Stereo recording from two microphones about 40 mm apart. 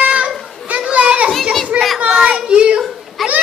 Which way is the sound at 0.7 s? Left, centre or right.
Right.